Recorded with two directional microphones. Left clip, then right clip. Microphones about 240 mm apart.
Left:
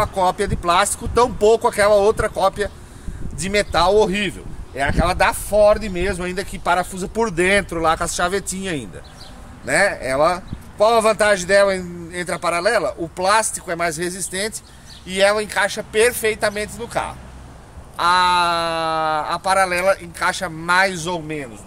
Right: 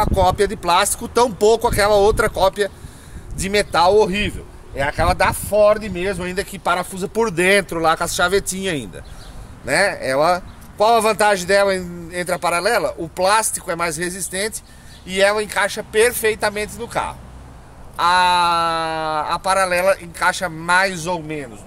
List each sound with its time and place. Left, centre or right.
0.0 s speech: right; by 21.4 s centre